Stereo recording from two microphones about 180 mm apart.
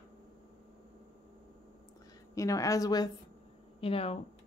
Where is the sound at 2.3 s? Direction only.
15° left (ahead or behind).